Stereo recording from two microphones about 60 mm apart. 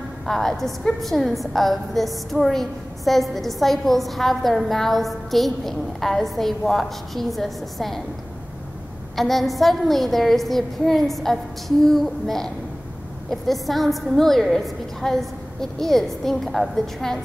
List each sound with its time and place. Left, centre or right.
0.3 s a woman's voice: centre
9.1 s a woman's voice: centre